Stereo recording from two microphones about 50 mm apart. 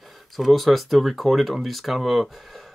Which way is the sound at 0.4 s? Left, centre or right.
Centre.